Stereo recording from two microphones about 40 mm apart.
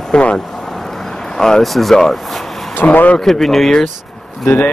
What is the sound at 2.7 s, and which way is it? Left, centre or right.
Speech, left.